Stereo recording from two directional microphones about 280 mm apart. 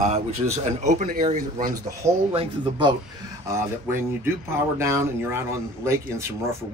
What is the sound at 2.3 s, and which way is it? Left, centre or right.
Speech, centre.